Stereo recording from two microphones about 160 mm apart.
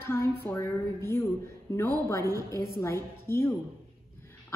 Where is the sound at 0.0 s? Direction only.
15° left (ahead or behind).